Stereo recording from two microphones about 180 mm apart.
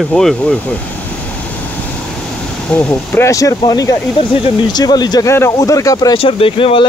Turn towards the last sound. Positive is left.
turn(degrees=30)  # may be behind; listen again after turning